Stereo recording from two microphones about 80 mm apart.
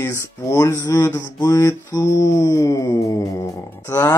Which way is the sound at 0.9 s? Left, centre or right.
Left.